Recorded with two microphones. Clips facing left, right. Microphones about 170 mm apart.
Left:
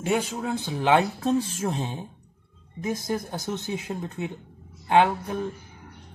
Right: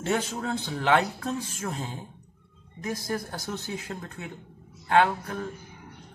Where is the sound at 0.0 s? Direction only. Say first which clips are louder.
Left 2 dB; 15° left (ahead or behind).